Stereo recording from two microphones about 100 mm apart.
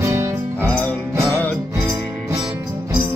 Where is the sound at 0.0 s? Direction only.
25° right (ahead or behind).